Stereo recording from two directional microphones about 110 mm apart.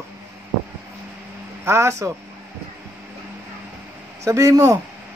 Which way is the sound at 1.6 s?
25° right (ahead or behind).